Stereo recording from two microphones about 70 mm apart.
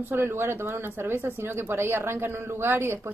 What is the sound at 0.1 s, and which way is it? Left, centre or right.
Speech, right.